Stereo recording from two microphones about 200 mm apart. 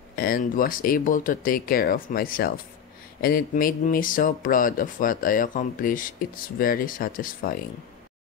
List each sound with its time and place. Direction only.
0.1 s speech: 45° left (ahead or behind)